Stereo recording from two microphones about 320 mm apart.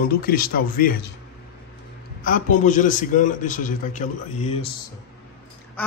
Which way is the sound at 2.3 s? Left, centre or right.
Left.